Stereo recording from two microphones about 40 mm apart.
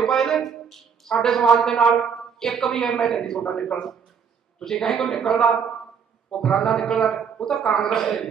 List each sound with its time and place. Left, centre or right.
0.0 s a man's voice: centre
4.8 s a man's voice: centre
7.0 s a woman's voice: centre